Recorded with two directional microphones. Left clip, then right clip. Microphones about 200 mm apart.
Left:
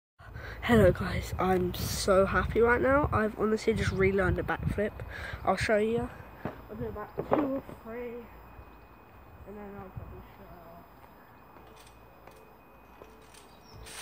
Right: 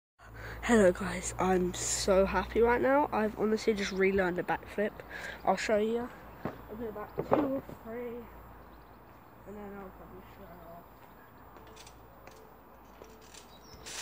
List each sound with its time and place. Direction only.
0.4 s speech: 5° left (ahead or behind)
7.9 s speech: 30° left (ahead or behind)